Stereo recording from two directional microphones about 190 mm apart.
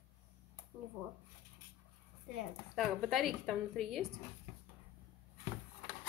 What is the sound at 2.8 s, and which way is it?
A woman's voice, centre (ahead or behind).